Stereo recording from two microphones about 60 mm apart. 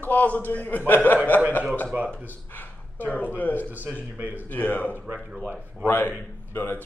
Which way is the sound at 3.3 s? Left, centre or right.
Left.